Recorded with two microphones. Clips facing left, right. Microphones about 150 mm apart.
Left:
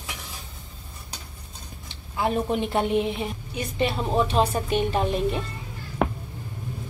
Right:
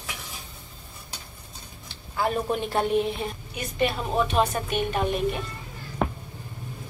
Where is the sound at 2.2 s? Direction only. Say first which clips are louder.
Left 1 dB; 20° left (ahead or behind).